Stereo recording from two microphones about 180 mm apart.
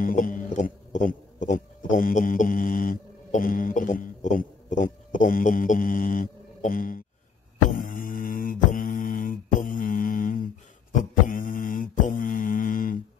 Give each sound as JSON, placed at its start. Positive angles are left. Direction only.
{"t": 0.0, "sound": "speech", "side_deg": 50}
{"t": 7.7, "sound": "mantra", "side_deg": 50}